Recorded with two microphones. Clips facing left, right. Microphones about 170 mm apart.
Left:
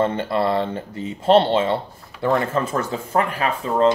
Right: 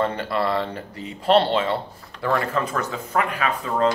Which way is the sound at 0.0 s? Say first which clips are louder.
Left 3 dB; 25° left (ahead or behind).